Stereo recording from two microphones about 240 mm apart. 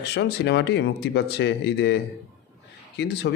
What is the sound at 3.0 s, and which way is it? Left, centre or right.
Speech, left.